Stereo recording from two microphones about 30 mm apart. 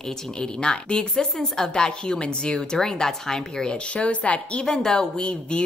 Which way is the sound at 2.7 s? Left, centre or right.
Centre.